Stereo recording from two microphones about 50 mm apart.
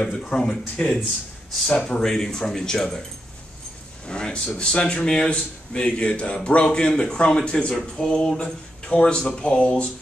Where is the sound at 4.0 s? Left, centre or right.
Centre.